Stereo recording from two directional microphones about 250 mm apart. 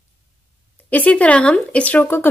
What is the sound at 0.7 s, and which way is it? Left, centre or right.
Speech, centre.